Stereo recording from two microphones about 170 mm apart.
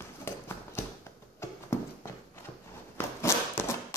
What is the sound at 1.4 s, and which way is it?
Horse, 15° left (ahead or behind).